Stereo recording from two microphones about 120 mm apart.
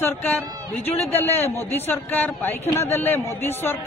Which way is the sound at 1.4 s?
20° left (ahead or behind).